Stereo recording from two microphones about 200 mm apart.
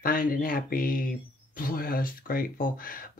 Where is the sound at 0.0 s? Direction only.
45° left (ahead or behind).